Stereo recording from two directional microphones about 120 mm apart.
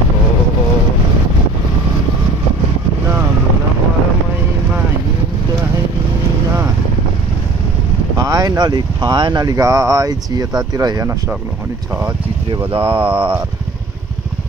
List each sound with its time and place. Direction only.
8.2 s speech: 30° right (ahead or behind)
12.4 s speech: 45° right (ahead or behind)
12.8 s speech: 15° right (ahead or behind)